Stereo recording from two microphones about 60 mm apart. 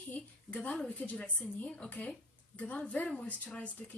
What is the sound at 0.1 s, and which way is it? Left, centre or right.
A woman's voice, left.